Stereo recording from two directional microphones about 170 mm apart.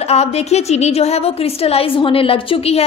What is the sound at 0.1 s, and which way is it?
A woman's voice, 40° left (ahead or behind).